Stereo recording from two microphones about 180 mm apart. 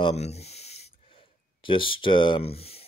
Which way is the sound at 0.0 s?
35° left (ahead or behind).